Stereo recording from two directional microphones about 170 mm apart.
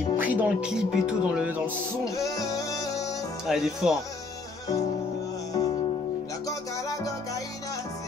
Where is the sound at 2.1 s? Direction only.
20° left (ahead or behind).